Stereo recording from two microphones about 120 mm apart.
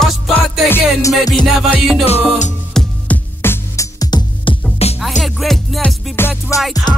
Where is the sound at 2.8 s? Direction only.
5° left (ahead or behind).